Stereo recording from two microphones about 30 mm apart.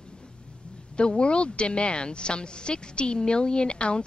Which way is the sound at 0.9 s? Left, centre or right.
Left.